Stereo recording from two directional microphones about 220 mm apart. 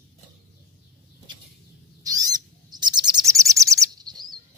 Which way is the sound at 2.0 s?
15° right (ahead or behind).